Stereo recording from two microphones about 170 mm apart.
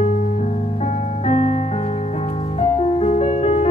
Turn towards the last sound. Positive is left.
turn(degrees=40)  # may be behind; listen again after turning